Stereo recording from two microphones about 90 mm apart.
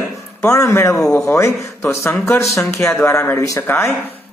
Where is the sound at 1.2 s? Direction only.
30° left (ahead or behind).